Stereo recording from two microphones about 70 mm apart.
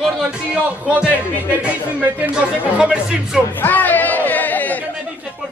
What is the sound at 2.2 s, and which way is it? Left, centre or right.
Speech, centre.